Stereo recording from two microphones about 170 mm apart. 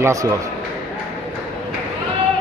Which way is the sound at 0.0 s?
20° right (ahead or behind).